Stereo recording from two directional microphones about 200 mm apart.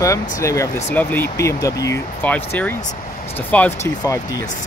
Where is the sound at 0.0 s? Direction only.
15° left (ahead or behind).